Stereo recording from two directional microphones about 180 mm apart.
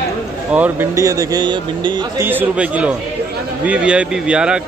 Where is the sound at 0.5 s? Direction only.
10° right (ahead or behind); by 2.0 s 25° right (ahead or behind).